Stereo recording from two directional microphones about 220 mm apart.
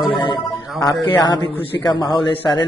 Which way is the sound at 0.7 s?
20° left (ahead or behind).